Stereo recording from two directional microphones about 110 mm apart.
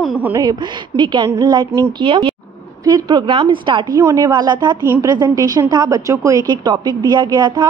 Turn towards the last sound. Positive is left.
turn(degrees=-40)  # may be behind; listen again after turning